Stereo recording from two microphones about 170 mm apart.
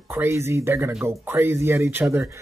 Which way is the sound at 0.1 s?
15° right (ahead or behind).